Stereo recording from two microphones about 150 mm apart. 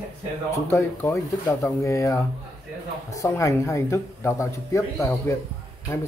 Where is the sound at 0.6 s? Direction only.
20° left (ahead or behind).